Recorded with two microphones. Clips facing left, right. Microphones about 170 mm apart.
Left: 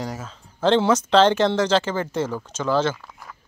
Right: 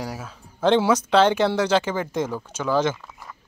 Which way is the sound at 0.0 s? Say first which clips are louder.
Left 1 dB; 10° right (ahead or behind).